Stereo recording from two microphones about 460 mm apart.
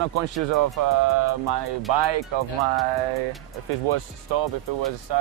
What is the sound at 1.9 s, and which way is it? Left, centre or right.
Speech, right.